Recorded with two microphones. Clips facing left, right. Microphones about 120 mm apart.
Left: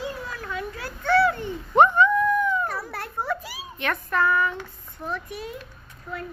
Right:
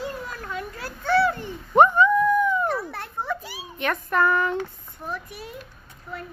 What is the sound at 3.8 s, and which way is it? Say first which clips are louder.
Child singing: right 2 dB; 20° right (ahead or behind).